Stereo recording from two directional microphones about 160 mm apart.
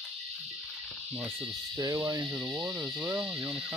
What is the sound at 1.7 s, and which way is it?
Speech, 20° right (ahead or behind).